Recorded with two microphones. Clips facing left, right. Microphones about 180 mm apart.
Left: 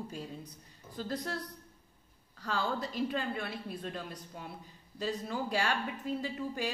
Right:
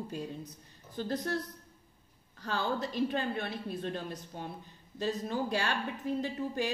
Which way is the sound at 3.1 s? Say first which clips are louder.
Right 2 dB; 25° right (ahead or behind).